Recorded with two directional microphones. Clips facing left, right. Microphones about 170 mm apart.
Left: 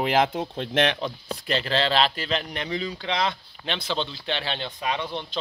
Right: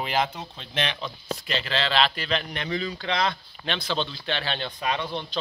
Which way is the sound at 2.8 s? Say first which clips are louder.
Even; 10° left (ahead or behind).